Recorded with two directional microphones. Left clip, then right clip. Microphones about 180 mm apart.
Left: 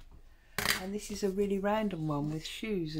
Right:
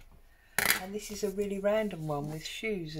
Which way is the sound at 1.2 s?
35° left (ahead or behind).